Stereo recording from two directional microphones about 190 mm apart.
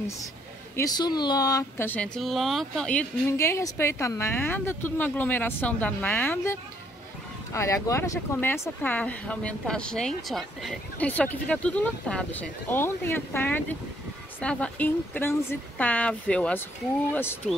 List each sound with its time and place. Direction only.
0.7 s speech: 20° left (ahead or behind)